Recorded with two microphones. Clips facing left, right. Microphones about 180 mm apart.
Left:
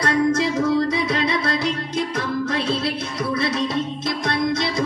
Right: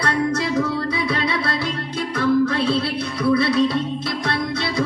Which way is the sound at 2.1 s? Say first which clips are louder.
Right 10 dB; 60° right (ahead or behind).